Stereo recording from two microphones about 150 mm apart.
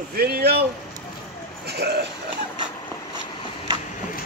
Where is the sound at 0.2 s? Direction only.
90° right.